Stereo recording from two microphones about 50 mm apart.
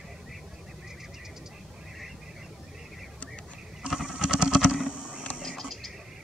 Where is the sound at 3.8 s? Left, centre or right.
Centre.